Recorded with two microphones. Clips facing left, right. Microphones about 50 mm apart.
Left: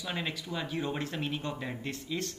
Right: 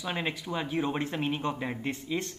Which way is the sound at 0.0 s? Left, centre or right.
Centre.